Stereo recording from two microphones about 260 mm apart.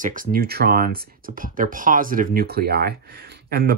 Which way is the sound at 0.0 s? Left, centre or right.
Right.